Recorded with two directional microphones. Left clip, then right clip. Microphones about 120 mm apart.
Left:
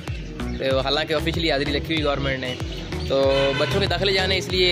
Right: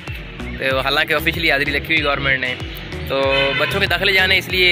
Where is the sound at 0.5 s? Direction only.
20° left (ahead or behind).